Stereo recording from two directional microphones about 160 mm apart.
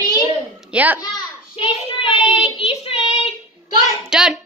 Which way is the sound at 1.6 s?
35° left (ahead or behind).